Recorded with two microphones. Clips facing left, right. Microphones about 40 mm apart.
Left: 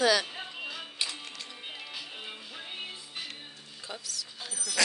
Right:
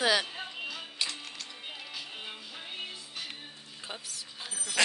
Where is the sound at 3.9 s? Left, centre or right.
Right.